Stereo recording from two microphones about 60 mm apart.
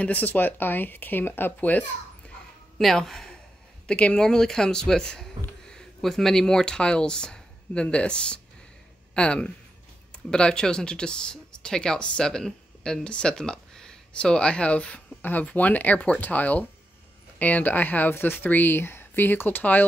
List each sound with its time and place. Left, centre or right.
0.0 s speech: left
2.8 s a man's voice: centre; by 19.8 s left